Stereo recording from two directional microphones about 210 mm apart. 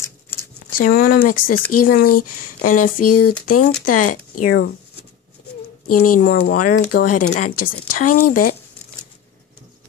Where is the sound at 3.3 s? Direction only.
40° left (ahead or behind).